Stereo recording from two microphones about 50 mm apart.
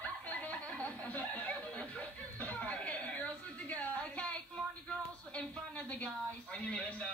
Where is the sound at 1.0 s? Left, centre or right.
Left.